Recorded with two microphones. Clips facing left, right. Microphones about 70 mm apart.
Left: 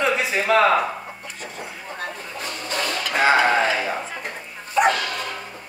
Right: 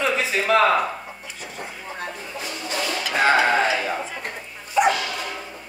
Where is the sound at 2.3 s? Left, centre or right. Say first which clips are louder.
Even; left.